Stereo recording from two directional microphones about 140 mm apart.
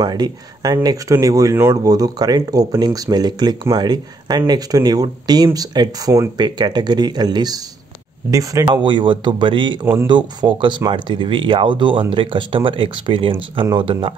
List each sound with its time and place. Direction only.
0.0 s speech: 30° right (ahead or behind)
8.6 s speech: 35° right (ahead or behind)